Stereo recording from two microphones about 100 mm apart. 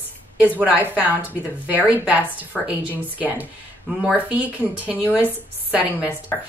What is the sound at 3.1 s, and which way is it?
Speech, 15° right (ahead or behind).